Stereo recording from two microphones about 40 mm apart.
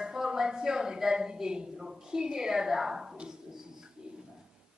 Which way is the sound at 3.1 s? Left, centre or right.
Centre.